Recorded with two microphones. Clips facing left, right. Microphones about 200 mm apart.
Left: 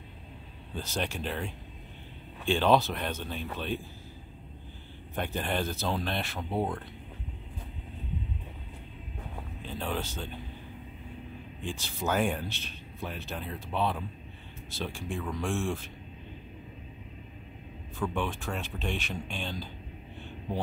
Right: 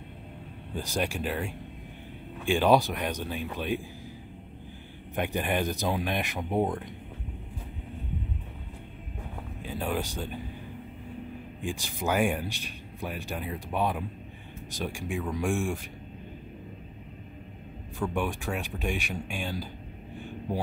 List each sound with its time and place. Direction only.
0.7 s speech: 10° right (ahead or behind)
5.1 s speech: 15° right (ahead or behind)
9.6 s speech: 10° right (ahead or behind)
11.6 s speech: 15° right (ahead or behind)
17.9 s speech: 10° right (ahead or behind)